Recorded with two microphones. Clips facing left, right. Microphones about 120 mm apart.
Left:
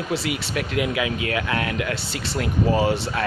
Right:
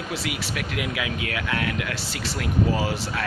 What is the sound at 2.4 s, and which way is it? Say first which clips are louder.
Speech: left 3 dB; 25° left (ahead or behind).